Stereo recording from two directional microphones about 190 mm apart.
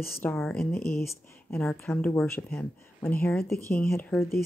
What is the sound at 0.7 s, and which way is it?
Speech, 55° left (ahead or behind).